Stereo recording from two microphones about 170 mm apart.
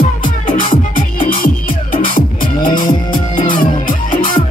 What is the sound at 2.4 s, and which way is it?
Music, 30° left (ahead or behind).